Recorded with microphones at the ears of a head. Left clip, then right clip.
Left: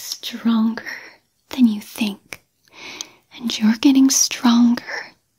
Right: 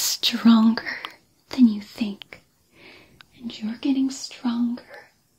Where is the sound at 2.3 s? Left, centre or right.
Left.